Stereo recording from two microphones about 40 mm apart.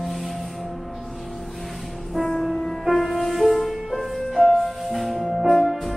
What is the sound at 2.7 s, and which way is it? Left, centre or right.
Music, centre.